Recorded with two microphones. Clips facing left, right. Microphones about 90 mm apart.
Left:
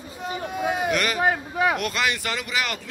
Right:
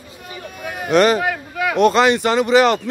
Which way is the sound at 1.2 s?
35° left (ahead or behind).